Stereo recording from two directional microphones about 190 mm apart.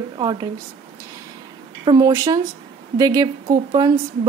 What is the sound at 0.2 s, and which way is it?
Speech, 20° right (ahead or behind).